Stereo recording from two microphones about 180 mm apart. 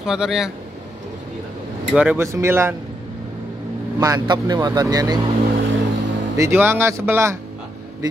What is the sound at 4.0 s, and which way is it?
Speech, 20° right (ahead or behind).